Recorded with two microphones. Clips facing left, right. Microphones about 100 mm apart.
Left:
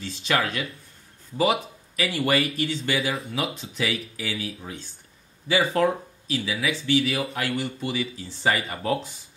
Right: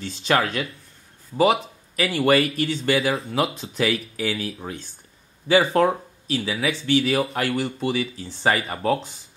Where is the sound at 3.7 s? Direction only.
50° right (ahead or behind).